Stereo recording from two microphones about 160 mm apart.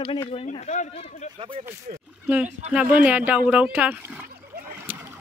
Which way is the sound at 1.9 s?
55° right (ahead or behind).